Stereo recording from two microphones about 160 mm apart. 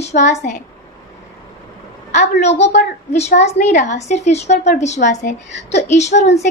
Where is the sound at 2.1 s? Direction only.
45° left (ahead or behind).